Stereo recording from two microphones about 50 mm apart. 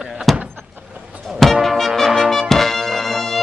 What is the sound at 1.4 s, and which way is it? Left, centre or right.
Music, centre.